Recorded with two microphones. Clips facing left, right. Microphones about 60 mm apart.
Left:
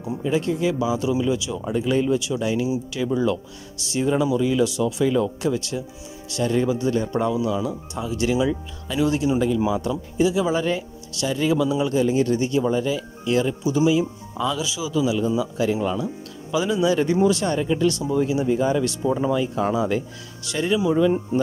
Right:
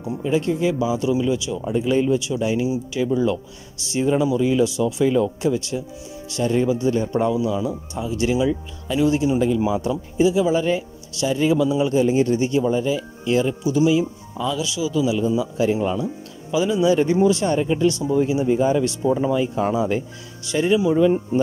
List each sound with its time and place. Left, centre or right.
0.3 s speech: centre
2.4 s speech: centre
10.3 s speech: centre
15.6 s speech: centre
16.5 s speech: centre
17.6 s speech: right
17.8 s speech: centre